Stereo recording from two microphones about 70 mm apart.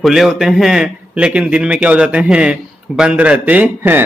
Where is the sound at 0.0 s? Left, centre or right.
Centre.